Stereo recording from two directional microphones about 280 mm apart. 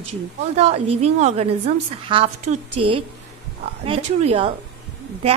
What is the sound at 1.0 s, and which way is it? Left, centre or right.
A woman's voice, right.